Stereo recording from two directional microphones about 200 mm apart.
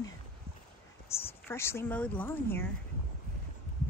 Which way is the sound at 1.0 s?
10° left (ahead or behind).